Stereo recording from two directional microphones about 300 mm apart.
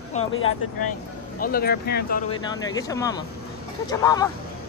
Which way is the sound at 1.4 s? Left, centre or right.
Left.